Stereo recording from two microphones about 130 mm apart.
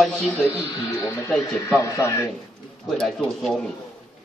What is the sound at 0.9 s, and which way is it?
Speech, 25° left (ahead or behind).